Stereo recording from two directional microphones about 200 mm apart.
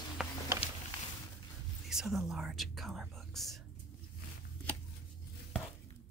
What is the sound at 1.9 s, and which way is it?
Whispering, centre (ahead or behind).